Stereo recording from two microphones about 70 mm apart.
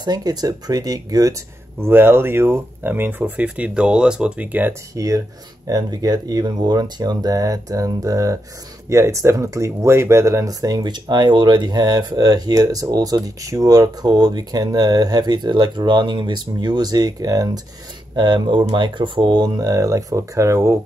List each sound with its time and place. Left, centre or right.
0.0 s speech: right
1.8 s speech: right
4.9 s speech: right
5.7 s speech: right
18.1 s speech: right
19.7 s speech: right